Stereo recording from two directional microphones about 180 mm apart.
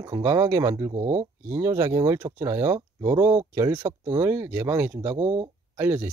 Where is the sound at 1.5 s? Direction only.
15° right (ahead or behind).